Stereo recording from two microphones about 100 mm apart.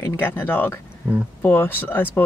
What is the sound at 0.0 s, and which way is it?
Speech, 25° left (ahead or behind).